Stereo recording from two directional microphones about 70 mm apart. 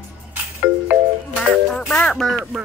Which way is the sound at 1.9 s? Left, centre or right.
Centre.